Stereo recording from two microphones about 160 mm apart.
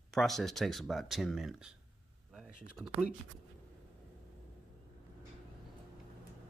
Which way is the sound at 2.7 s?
Centre (ahead or behind).